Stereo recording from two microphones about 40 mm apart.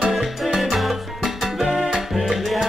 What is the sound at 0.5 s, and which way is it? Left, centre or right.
Salsa music, centre.